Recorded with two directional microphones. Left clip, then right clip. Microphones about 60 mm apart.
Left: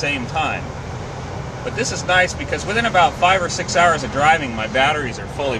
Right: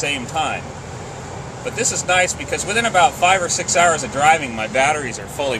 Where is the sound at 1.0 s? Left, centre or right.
Centre.